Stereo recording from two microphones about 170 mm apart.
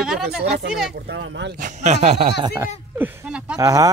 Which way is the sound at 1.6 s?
45° right (ahead or behind).